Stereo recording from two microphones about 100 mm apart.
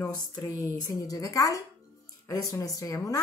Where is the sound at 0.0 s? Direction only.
35° left (ahead or behind).